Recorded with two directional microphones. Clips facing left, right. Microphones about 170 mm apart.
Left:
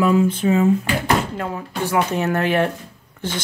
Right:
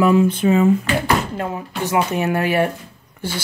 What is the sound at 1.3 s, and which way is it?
Speech, 20° right (ahead or behind).